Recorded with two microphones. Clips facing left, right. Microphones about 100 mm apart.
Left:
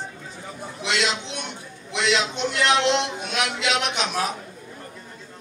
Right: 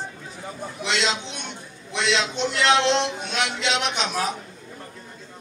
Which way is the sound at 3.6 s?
25° right (ahead or behind).